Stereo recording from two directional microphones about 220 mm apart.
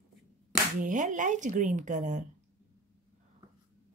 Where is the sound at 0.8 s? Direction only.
35° right (ahead or behind).